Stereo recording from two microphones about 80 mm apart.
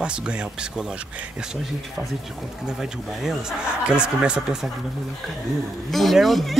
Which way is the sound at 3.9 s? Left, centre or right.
Centre.